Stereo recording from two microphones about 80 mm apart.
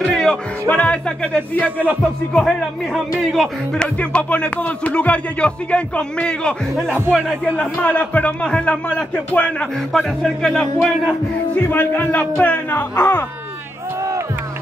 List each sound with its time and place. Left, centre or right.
0.1 s music: centre
0.7 s speech: centre
2.3 s a man's voice: centre
7.8 s speech: centre
9.9 s speech: centre
11.5 s speech: left